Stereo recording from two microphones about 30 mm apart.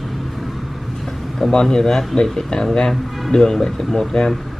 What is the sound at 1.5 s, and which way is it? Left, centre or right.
Speech, left.